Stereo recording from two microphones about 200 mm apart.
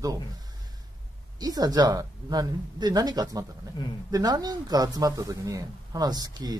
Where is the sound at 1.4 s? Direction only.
20° right (ahead or behind).